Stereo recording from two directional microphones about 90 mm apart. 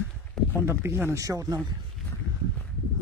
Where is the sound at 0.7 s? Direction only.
30° right (ahead or behind).